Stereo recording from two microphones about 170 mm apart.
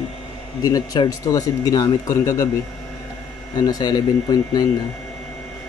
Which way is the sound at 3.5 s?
25° left (ahead or behind).